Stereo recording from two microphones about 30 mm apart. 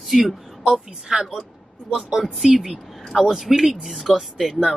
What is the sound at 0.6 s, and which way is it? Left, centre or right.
A woman's voice, centre.